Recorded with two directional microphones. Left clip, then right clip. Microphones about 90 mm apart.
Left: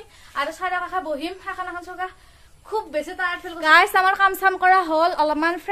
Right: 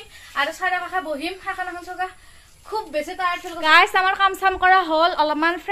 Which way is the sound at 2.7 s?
25° left (ahead or behind).